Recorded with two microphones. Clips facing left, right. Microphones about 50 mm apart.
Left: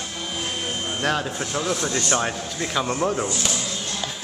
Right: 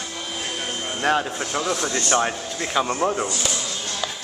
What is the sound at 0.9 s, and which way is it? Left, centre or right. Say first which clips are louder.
Speech: right 4 dB; centre.